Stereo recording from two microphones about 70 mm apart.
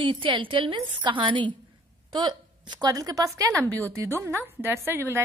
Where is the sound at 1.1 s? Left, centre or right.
Right.